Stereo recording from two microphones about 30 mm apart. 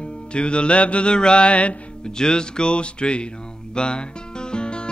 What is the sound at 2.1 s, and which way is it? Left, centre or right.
Speech, left.